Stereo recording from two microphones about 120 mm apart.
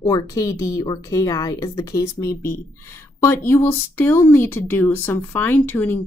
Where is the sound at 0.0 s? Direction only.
30° left (ahead or behind).